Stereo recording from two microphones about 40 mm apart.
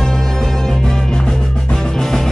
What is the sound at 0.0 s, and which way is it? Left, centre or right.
Music, centre.